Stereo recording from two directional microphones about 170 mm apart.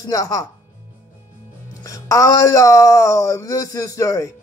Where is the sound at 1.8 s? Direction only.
20° left (ahead or behind).